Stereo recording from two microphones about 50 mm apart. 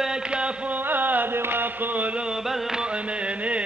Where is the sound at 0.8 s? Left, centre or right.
Right.